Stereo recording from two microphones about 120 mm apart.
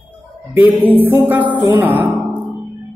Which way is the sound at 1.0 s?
15° right (ahead or behind).